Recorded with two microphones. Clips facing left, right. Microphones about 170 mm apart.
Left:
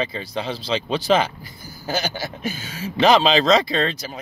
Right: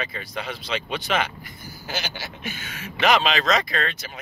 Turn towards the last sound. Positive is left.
turn(degrees=30)  # may be behind; listen again after turning